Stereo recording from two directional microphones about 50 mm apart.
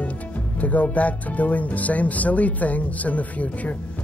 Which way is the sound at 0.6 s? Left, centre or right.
Left.